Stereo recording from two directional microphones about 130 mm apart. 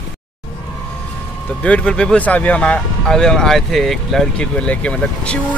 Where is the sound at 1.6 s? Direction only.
10° left (ahead or behind).